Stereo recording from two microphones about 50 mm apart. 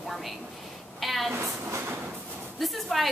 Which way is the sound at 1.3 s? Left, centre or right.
Right.